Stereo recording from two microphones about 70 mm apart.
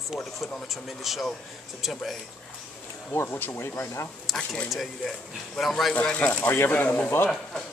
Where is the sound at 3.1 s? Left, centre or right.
Left.